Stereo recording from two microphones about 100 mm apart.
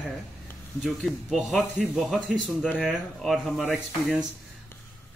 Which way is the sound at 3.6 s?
20° left (ahead or behind).